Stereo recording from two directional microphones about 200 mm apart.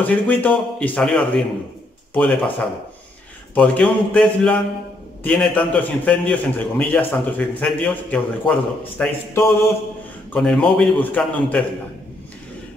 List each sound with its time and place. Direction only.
0.0 s a man's voice: 10° left (ahead or behind)
3.5 s a man's voice: 5° left (ahead or behind)